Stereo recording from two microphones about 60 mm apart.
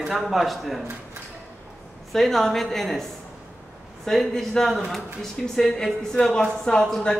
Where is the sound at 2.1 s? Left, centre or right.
Centre.